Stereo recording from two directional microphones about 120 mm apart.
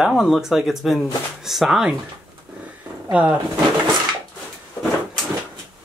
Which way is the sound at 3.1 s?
10° right (ahead or behind).